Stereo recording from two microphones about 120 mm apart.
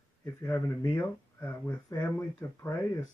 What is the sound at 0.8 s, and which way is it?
Speech, 20° left (ahead or behind).